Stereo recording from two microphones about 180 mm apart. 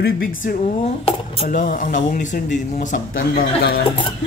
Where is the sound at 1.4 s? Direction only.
45° left (ahead or behind).